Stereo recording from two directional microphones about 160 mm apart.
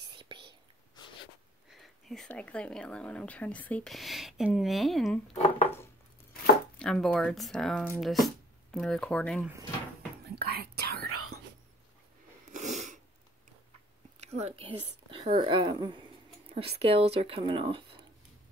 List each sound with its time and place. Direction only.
0.1 s whispering: 30° right (ahead or behind)
1.7 s speech: centre (ahead or behind)
5.3 s speech: 45° left (ahead or behind)
6.8 s speech: 5° left (ahead or behind)
10.2 s whispering: 85° right
12.4 s sneeze: 50° right (ahead or behind)
14.2 s speech: 40° right (ahead or behind)